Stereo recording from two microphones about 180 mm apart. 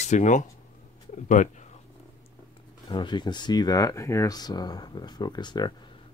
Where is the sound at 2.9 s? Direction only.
25° left (ahead or behind).